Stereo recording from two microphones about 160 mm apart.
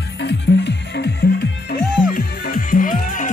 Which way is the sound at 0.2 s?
90° left.